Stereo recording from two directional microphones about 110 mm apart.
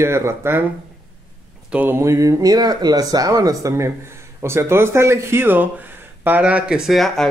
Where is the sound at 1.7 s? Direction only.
15° right (ahead or behind).